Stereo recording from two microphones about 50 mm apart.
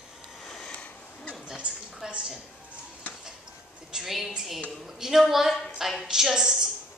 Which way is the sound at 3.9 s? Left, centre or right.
Centre.